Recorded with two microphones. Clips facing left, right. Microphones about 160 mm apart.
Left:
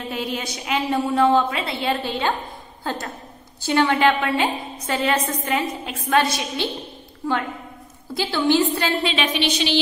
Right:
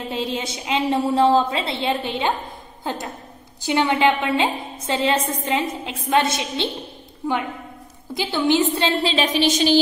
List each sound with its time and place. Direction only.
0.1 s a woman's voice: 25° right (ahead or behind)
8.1 s a woman's voice: 20° right (ahead or behind)
8.7 s a woman's voice: 30° right (ahead or behind)